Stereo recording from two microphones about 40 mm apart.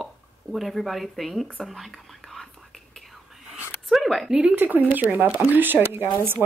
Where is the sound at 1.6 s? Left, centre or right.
Centre.